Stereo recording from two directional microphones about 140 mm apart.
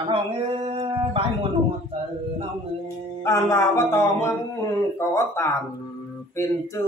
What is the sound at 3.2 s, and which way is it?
Speech, 25° left (ahead or behind).